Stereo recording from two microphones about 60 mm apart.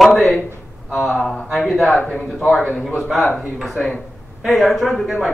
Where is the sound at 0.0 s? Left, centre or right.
Centre.